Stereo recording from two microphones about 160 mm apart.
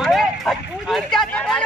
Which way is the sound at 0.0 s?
Centre (ahead or behind).